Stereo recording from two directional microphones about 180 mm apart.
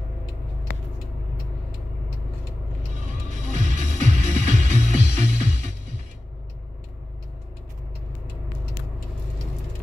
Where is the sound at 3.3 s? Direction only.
45° right (ahead or behind).